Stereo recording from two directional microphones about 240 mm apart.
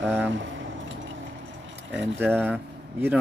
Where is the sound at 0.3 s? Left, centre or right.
Right.